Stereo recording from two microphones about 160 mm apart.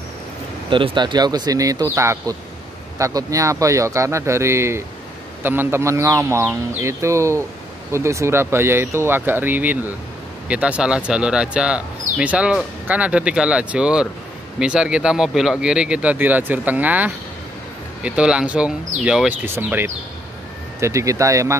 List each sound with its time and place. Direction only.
0.7 s speech: 30° right (ahead or behind)